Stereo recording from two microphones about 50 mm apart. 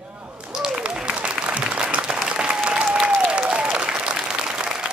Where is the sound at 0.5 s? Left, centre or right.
Centre.